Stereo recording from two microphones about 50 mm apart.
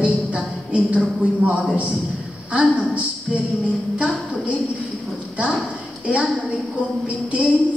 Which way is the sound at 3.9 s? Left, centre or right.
Right.